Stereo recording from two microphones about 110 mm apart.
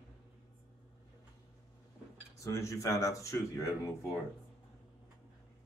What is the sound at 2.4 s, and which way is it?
Speech, 30° left (ahead or behind).